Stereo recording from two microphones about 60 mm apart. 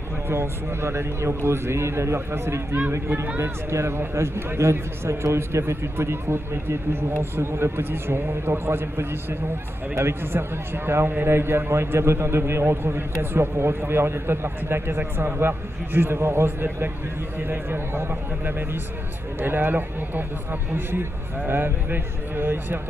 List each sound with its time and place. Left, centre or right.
0.3 s a man's voice: right